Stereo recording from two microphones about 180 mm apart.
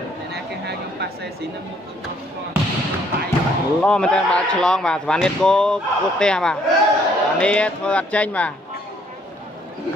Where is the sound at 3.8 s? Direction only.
5° left (ahead or behind).